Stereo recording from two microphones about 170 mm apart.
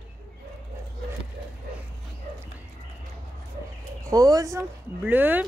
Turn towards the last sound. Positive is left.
turn(degrees=-10)  # may be behind; listen again after turning